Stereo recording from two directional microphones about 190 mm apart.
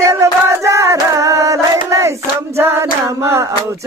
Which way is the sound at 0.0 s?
15° right (ahead or behind).